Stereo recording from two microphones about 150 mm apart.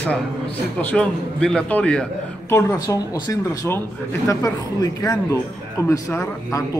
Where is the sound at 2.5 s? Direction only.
20° left (ahead or behind).